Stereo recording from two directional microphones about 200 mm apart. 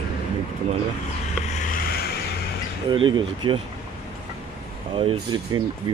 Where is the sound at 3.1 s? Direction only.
25° right (ahead or behind).